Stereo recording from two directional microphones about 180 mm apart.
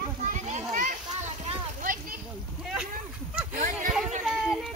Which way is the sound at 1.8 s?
50° right (ahead or behind).